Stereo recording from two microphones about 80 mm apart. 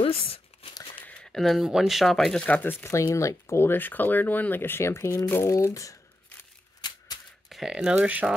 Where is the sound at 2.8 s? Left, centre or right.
Left.